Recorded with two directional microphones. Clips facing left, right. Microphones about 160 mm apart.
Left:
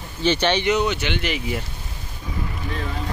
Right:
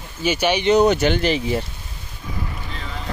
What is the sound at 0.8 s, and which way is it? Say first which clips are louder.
Speech: right 7 dB; 40° right (ahead or behind).